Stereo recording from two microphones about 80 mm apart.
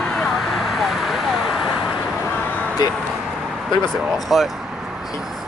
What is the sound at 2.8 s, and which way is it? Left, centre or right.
Speech, left.